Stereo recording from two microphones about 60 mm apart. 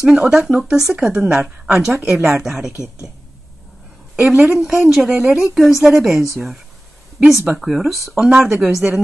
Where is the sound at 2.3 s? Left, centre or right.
Centre.